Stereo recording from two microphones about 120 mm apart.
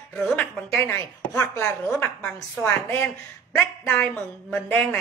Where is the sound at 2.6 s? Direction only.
15° left (ahead or behind).